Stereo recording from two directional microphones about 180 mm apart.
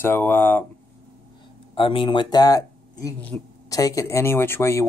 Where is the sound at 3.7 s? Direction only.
20° left (ahead or behind).